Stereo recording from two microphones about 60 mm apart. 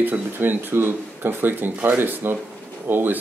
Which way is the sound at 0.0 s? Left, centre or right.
Right.